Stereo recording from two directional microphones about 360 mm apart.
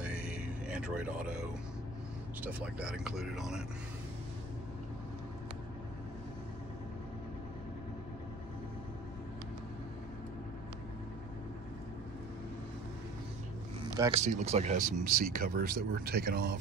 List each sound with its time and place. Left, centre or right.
0.0 s music: centre
2.4 s speech: centre
13.9 s speech: centre; by 16.5 s right